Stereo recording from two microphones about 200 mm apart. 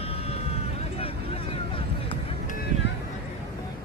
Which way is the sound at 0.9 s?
30° left (ahead or behind).